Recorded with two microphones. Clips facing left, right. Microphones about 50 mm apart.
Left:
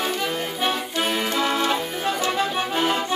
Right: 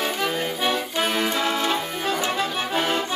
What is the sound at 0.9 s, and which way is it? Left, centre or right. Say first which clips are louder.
Accordion: even; centre.